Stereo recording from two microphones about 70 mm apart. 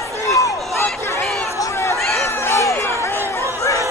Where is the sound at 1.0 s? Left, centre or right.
Left.